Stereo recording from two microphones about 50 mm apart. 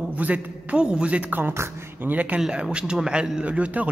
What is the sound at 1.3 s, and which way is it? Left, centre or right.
Speech, right.